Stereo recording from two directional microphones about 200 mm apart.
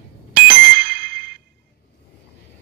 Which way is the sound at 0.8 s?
55° right (ahead or behind).